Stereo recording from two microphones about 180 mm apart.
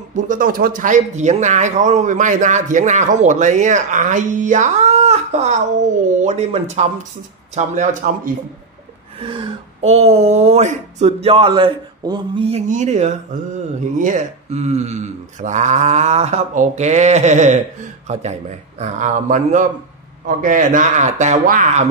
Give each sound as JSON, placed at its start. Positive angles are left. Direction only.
{"t": 0.1, "sound": "speech", "side_deg": -45}
{"t": 9.2, "sound": "speech", "side_deg": -30}
{"t": 12.4, "sound": "speech", "side_deg": -40}